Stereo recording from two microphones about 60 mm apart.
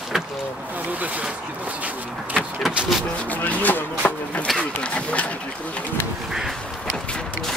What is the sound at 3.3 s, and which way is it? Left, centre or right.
Chopping, left.